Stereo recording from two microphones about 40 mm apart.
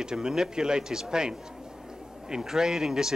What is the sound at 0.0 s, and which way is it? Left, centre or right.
A man's voice, centre.